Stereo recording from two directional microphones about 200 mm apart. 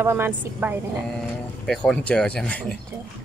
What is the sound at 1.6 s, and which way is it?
Speech, 5° left (ahead or behind).